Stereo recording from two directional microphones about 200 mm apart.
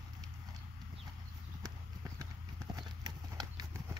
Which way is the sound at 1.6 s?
15° right (ahead or behind).